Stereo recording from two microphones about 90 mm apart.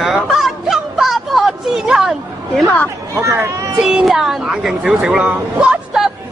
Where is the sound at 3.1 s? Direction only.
30° right (ahead or behind).